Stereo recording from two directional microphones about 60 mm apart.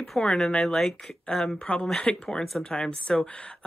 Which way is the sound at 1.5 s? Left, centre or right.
Centre.